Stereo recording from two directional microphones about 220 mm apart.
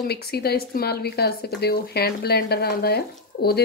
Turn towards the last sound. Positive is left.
turn(degrees=45)  # may be behind; listen again after turning